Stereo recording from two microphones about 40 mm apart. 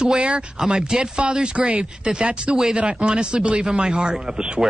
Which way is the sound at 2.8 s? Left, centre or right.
Right.